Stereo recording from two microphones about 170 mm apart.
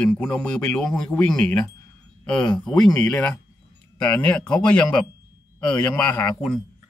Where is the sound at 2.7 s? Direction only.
20° left (ahead or behind).